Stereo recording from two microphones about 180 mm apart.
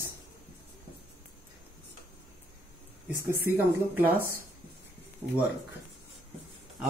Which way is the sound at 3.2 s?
15° right (ahead or behind).